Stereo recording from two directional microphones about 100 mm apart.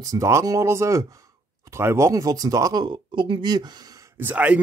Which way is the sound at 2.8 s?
55° right (ahead or behind).